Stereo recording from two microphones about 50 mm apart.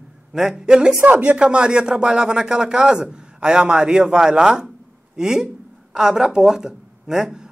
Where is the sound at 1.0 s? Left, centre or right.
Right.